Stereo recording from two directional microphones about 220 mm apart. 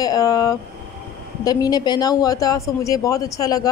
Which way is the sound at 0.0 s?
15° left (ahead or behind).